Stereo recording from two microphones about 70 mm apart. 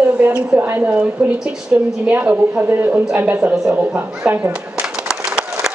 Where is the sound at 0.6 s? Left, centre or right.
Right.